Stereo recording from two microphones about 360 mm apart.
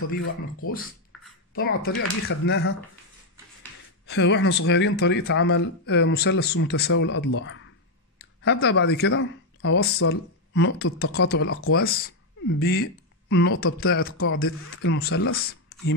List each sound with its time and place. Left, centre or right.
0.2 s speech: left
1.1 s a sound: centre
1.5 s a man's voice: left
4.1 s a man's voice: left